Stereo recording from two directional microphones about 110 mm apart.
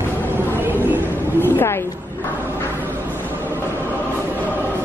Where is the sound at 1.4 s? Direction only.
20° left (ahead or behind).